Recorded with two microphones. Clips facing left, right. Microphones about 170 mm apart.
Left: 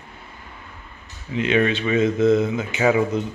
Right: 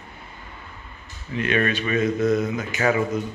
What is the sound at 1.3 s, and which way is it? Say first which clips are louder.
A man's voice: left 3 dB; 20° left (ahead or behind).